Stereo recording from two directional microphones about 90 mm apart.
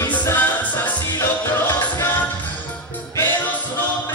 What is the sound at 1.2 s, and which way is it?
Music, 30° left (ahead or behind).